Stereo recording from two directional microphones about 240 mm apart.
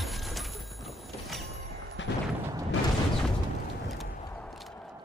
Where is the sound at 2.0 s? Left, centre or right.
Left.